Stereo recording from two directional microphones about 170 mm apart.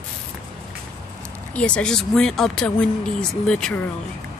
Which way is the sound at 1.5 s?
5° left (ahead or behind).